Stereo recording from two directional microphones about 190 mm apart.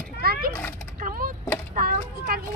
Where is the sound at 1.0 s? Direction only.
45° right (ahead or behind).